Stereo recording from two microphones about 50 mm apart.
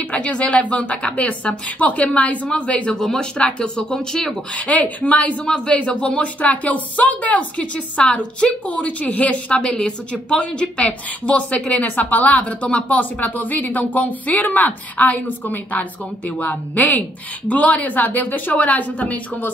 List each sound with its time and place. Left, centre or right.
0.1 s speech: left
2.9 s speech: centre
4.6 s speech: left
5.4 s speech: centre; by 19.5 s left